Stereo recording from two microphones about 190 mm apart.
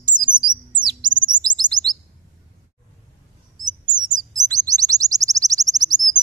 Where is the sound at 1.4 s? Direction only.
20° right (ahead or behind).